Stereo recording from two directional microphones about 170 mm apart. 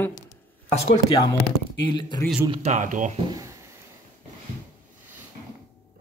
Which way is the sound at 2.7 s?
50° right (ahead or behind).